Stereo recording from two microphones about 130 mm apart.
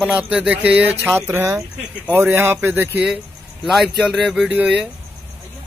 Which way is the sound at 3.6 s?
Centre (ahead or behind).